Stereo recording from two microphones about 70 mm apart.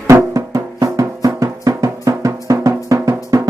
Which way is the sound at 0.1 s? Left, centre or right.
Right.